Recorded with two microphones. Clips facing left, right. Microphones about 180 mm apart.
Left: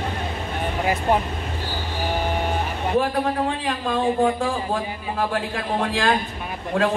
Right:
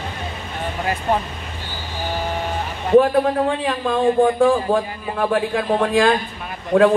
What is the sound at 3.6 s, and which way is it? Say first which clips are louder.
A man's voice: right 3 dB; 55° right (ahead or behind).